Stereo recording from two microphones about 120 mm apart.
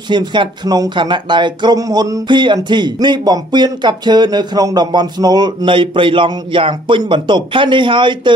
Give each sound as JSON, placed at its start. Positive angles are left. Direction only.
{"t": 0.1, "sound": "speech", "side_deg": -40}